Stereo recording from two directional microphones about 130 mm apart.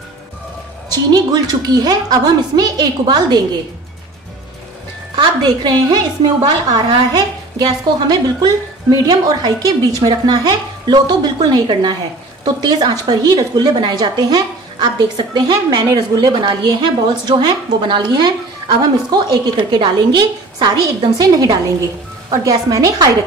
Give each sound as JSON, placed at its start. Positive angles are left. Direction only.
{"t": 0.8, "sound": "a woman's voice", "side_deg": -30}
{"t": 5.1, "sound": "a woman's voice", "side_deg": -35}